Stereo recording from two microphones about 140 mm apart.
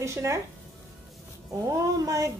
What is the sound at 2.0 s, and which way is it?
Speech, 25° right (ahead or behind).